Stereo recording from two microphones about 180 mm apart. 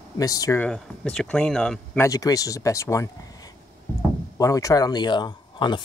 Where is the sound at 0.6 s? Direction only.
5° left (ahead or behind).